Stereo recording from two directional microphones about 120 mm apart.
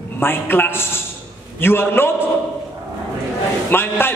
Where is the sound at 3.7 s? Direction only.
20° left (ahead or behind).